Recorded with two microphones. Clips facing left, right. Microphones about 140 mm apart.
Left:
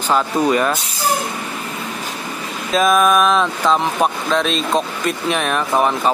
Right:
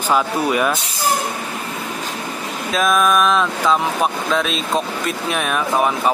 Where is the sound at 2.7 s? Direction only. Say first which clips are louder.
Left 3 dB; centre (ahead or behind).